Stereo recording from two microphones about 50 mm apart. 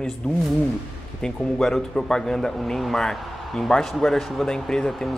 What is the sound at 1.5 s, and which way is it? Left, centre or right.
Speech, centre.